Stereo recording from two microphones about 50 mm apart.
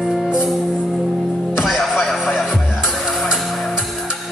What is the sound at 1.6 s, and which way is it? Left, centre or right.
Music, centre.